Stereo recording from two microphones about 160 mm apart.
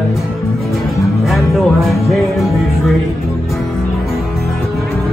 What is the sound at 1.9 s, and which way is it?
Music, centre (ahead or behind).